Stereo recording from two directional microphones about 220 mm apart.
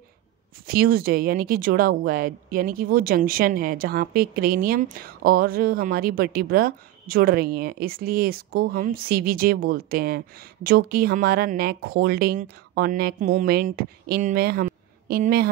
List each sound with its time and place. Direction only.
0.7 s a woman's voice: 40° right (ahead or behind)